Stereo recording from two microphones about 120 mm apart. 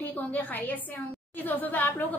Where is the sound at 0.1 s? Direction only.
15° left (ahead or behind).